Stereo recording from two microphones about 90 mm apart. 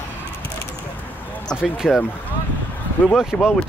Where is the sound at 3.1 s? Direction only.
5° right (ahead or behind).